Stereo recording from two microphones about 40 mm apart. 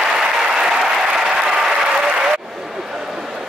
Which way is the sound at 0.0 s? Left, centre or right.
Centre.